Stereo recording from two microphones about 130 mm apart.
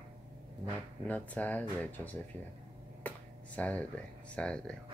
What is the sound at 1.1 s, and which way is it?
Speech, 10° left (ahead or behind).